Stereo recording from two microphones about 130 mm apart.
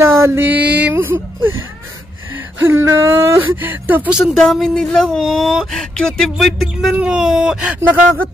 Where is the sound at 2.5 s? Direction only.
20° right (ahead or behind).